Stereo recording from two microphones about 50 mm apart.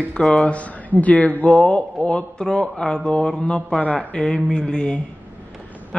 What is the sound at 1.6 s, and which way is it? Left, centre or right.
A man's voice, centre.